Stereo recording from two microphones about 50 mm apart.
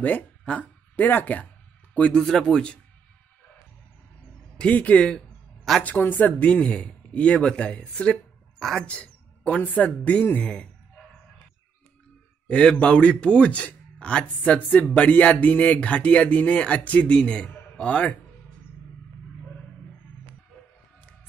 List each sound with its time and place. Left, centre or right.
0.5 s speech: left
2.0 s speech: left
2.2 s speech: centre
4.6 s a woman's voice: left
6.4 s speech: left
8.5 s a woman's voice: centre
8.8 s speech: left
12.4 s a man's voice: left
17.2 s speech: centre